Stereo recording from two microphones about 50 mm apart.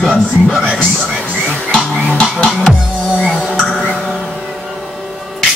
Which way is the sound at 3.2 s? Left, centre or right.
Centre.